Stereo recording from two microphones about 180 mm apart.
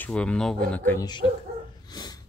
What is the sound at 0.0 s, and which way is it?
Speech, 5° left (ahead or behind).